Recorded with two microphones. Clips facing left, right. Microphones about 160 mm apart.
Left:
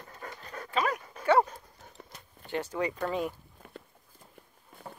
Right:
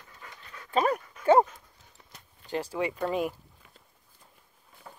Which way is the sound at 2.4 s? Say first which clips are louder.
Right 1 dB; 35° right (ahead or behind).